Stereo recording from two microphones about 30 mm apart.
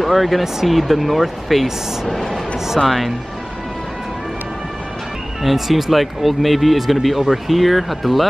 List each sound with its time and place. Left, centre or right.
0.0 s speech: centre
5.4 s speech: centre